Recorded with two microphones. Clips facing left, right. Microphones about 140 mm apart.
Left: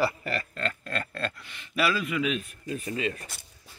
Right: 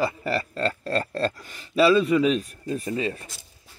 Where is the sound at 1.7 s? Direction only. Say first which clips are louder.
Right 9 dB; 30° right (ahead or behind).